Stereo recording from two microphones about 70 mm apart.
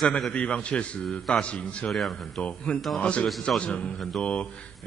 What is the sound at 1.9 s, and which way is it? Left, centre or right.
Speech, centre.